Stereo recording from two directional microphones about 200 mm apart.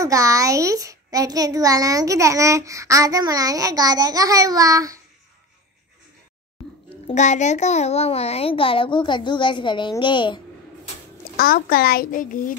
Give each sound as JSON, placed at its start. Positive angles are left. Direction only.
{"t": 0.0, "sound": "a child's voice", "side_deg": -15}
{"t": 7.1, "sound": "a child's voice", "side_deg": 35}
{"t": 11.3, "sound": "a child's voice", "side_deg": 45}